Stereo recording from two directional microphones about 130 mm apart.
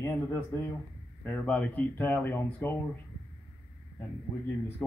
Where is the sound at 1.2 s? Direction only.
10° left (ahead or behind).